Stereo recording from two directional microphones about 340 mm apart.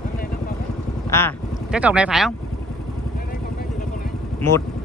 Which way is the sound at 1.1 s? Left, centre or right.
Centre.